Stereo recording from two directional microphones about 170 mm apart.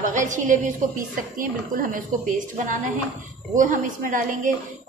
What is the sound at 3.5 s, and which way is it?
A woman's voice, 50° right (ahead or behind).